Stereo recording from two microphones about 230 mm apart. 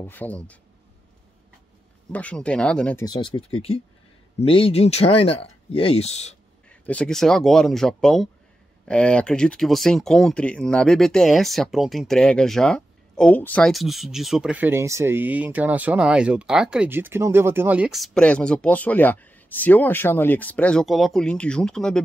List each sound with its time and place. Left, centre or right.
0.0 s speech: centre
2.1 s speech: centre
3.1 s speech: left
6.7 s speech: centre